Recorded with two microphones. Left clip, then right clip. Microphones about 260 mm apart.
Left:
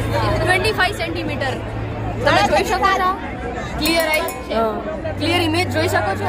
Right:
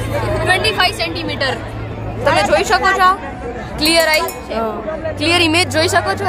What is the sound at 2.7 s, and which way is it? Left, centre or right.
Speech, right.